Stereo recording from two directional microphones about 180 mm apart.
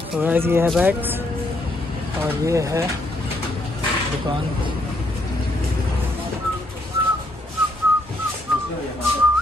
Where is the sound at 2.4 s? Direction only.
15° right (ahead or behind).